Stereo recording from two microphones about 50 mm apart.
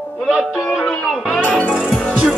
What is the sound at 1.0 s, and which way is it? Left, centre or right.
Music, centre.